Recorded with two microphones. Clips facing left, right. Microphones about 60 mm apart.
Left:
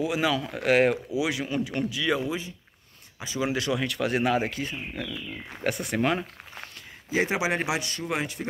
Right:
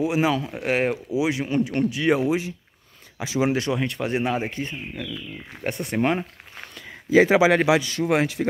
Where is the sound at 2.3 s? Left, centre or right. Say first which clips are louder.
Right 8 dB; right.